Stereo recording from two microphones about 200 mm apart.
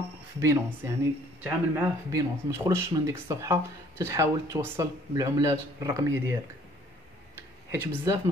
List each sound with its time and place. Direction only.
0.4 s speech: 15° right (ahead or behind)
7.7 s speech: 15° right (ahead or behind)